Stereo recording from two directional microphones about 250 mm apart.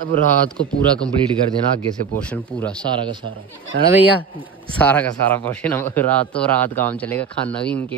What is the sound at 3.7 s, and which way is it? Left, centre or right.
Speech, right.